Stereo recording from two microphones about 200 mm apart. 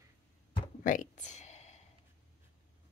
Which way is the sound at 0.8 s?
40° left (ahead or behind).